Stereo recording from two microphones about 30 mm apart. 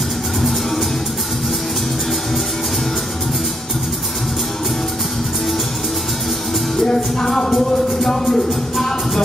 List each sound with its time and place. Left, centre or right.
6.8 s music: centre